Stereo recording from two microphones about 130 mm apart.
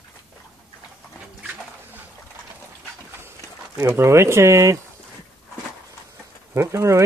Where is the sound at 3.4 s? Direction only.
25° left (ahead or behind).